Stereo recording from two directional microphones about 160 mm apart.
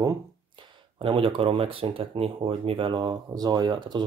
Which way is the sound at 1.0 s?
35° right (ahead or behind).